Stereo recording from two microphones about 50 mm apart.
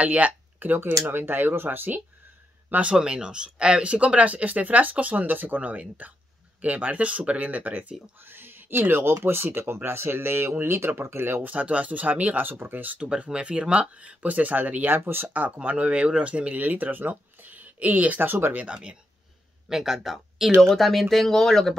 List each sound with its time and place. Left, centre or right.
0.0 s speech: right
0.8 s speech: right
2.9 s speech: centre
8.2 s speech: right
11.4 s speech: right
12.5 s speech: right
12.8 s speech: right
13.1 s speech: centre
15.0 s speech: right
15.3 s speech: right
16.6 s speech: right
18.6 s speech: right
19.7 s speech: centre